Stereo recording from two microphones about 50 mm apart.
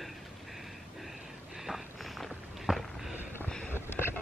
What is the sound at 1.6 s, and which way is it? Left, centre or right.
Walk, centre.